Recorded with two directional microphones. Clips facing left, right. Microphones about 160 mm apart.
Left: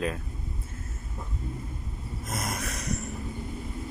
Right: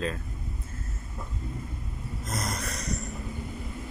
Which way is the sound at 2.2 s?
5° left (ahead or behind).